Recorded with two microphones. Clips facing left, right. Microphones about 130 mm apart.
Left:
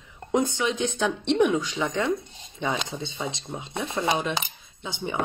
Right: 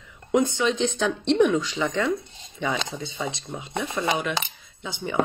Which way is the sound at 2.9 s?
25° left (ahead or behind).